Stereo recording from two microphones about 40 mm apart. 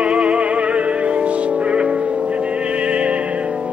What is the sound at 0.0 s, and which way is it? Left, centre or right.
Music, right.